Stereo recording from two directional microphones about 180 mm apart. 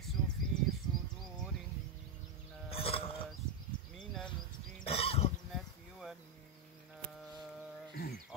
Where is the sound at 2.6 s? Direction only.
30° left (ahead or behind).